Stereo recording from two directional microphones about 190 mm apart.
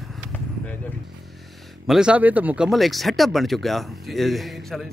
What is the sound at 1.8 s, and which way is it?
Speech, 5° right (ahead or behind).